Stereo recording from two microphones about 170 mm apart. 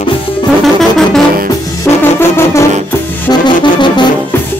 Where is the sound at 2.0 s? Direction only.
15° left (ahead or behind).